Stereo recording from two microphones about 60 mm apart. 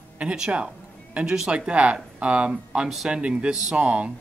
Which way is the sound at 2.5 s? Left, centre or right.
Centre.